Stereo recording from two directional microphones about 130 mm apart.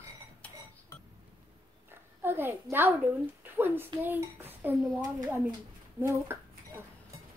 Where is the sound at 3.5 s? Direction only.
15° right (ahead or behind).